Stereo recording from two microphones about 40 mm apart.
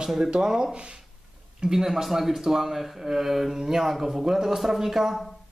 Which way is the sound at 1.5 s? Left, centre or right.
Centre.